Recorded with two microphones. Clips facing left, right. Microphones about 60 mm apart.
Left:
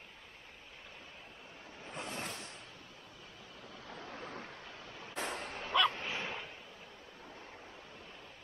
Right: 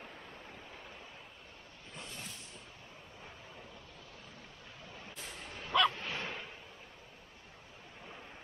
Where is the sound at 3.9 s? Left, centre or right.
Left.